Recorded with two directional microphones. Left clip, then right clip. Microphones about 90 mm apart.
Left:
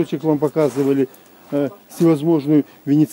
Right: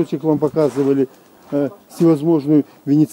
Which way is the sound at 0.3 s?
Centre (ahead or behind).